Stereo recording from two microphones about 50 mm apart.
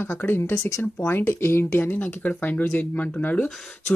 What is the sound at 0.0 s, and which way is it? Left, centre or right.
Speech, left.